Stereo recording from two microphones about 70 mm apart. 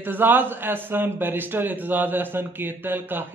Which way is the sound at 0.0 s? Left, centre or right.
Right.